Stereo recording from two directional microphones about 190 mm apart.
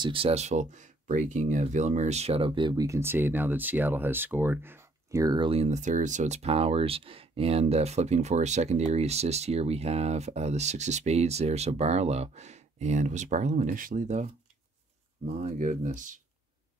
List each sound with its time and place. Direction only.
0.0 s speech: 30° right (ahead or behind)
15.3 s speech: 40° right (ahead or behind)